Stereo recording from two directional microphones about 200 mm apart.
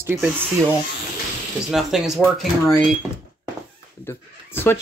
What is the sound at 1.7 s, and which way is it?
Speech, centre (ahead or behind).